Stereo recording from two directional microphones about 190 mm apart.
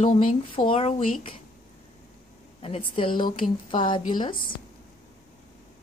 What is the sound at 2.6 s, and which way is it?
Speech, 30° left (ahead or behind).